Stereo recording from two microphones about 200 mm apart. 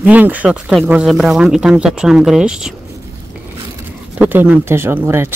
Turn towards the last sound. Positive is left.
turn(degrees=-10)  # may be behind; listen again after turning